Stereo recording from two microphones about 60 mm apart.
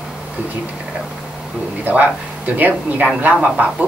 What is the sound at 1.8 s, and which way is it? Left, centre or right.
A woman's voice, right.